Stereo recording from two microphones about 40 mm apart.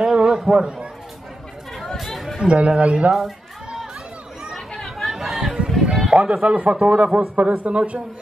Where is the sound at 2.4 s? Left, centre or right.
Right.